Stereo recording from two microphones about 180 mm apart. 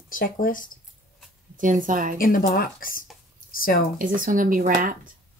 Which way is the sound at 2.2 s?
50° left (ahead or behind).